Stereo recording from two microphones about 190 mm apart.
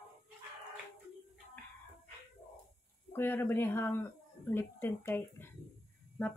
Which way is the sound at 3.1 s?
10° left (ahead or behind).